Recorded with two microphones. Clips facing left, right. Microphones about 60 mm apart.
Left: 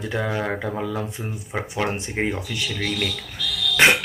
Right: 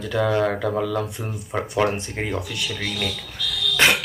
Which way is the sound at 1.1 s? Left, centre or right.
Centre.